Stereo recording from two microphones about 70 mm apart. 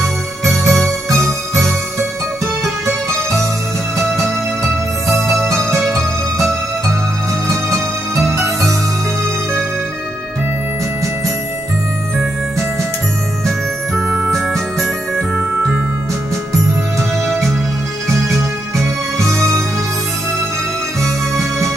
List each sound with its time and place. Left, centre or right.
0.5 s music: centre
1.5 s music: right
3.1 s music: right
5.6 s music: centre
8.3 s music: right
13.9 s music: centre